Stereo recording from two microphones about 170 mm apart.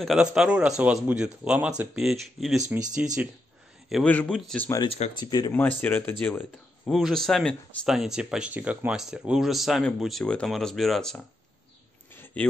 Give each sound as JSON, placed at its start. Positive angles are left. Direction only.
{"t": 0.0, "sound": "speech", "side_deg": -5}
{"t": 3.9, "sound": "a man's voice", "side_deg": 10}
{"t": 4.8, "sound": "speech", "side_deg": 35}
{"t": 5.1, "sound": "speech", "side_deg": 25}
{"t": 5.5, "sound": "speech", "side_deg": 10}
{"t": 12.1, "sound": "a sound", "side_deg": 10}